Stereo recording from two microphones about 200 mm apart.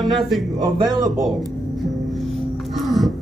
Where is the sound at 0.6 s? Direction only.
20° right (ahead or behind).